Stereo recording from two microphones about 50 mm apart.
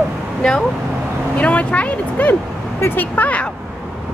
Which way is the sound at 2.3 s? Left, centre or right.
Left.